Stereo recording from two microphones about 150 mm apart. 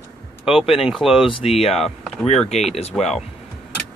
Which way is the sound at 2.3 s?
45° left (ahead or behind).